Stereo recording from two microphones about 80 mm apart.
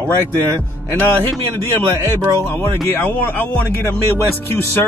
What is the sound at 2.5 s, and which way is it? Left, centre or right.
A man's voice, left.